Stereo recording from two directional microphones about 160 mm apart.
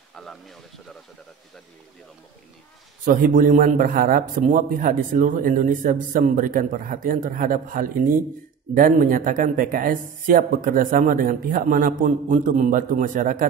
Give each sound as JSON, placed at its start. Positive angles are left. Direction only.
{"t": 0.1, "sound": "speech", "side_deg": 5}
{"t": 3.1, "sound": "a man's voice", "side_deg": -55}